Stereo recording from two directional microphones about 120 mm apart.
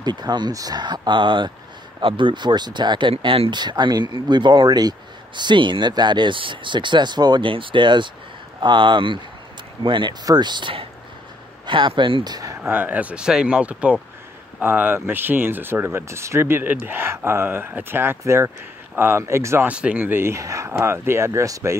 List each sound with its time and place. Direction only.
0.0 s speech: 35° right (ahead or behind)
12.6 s speech: 15° right (ahead or behind)
19.7 s speech: 10° right (ahead or behind); by 21.7 s 25° right (ahead or behind)